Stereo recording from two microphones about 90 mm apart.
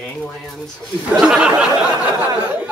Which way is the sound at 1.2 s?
10° right (ahead or behind).